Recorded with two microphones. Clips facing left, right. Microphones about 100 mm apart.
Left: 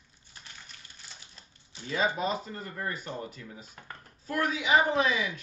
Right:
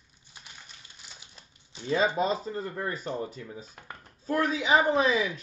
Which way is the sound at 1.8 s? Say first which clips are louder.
Right 4 dB; 30° right (ahead or behind).